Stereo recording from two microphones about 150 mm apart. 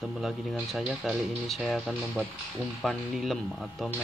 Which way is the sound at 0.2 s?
Centre (ahead or behind).